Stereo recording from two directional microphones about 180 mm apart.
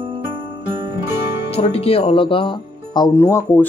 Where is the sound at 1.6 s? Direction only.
35° left (ahead or behind); by 3.6 s 15° left (ahead or behind).